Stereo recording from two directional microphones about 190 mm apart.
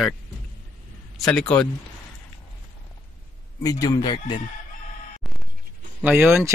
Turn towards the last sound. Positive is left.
turn(degrees=-10)  # may be behind; listen again after turning